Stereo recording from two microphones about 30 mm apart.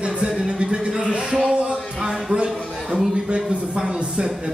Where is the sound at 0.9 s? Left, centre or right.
Right.